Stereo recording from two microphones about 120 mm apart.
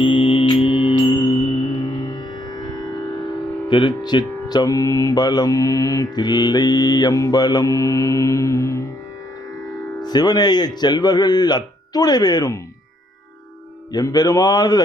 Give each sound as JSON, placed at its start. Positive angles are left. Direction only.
{"t": 0.0, "sound": "mantra", "side_deg": 50}
{"t": 1.9, "sound": "music", "side_deg": 35}
{"t": 3.6, "sound": "speech", "side_deg": 40}
{"t": 9.9, "sound": "speech", "side_deg": 35}
{"t": 13.9, "sound": "speech", "side_deg": 35}